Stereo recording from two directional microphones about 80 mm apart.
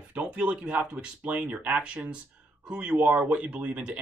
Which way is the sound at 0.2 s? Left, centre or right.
Centre.